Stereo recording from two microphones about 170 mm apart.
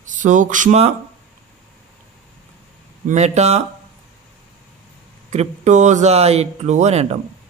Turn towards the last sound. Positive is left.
turn(degrees=-40)  # may be behind; listen again after turning